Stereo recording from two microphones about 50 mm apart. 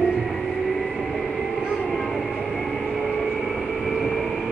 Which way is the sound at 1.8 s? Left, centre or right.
Centre.